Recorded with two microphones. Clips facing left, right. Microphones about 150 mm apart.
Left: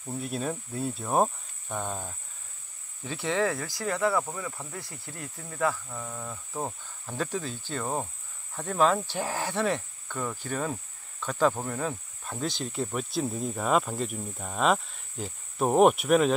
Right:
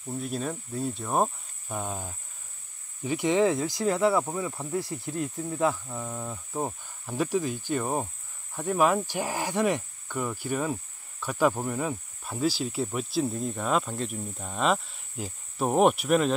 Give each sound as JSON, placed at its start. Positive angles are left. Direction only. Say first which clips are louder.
{"t": 0.0, "sound": "speech", "louder": "even", "side_deg": 0}